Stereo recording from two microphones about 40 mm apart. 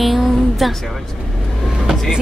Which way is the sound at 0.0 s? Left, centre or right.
Centre.